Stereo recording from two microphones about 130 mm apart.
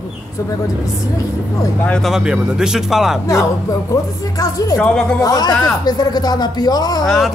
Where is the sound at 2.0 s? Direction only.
5° right (ahead or behind).